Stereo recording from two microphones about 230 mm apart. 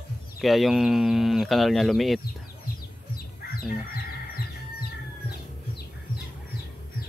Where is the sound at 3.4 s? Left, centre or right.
Left.